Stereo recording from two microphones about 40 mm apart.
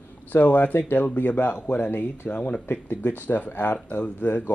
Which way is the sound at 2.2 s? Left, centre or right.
Left.